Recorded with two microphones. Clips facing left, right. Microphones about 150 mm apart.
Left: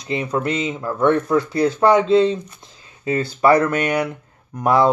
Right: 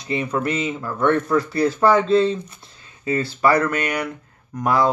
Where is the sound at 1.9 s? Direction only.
20° left (ahead or behind).